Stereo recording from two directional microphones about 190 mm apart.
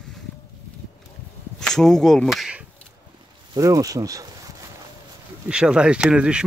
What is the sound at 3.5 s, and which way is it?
Speech, 20° right (ahead or behind).